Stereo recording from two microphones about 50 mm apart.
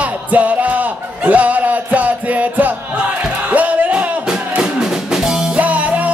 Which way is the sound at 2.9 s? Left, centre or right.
Right.